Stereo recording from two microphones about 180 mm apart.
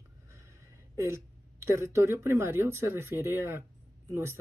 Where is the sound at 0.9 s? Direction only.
15° right (ahead or behind).